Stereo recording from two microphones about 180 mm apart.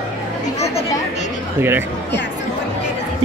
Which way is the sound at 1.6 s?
10° right (ahead or behind).